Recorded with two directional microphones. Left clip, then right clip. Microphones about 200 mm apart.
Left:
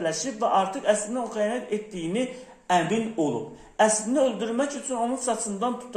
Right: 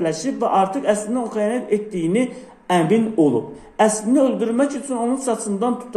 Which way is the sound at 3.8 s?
15° right (ahead or behind).